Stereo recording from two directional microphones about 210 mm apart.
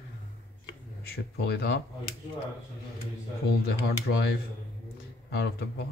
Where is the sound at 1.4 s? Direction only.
50° left (ahead or behind).